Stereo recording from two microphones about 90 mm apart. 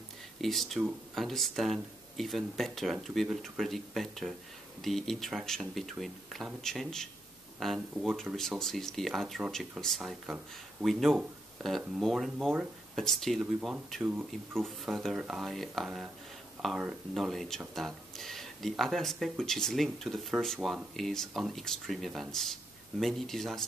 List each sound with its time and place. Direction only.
0.4 s speech: centre (ahead or behind)
14.0 s speech: 20° right (ahead or behind)
14.6 s speech: 5° left (ahead or behind)
17.1 s speech: centre (ahead or behind)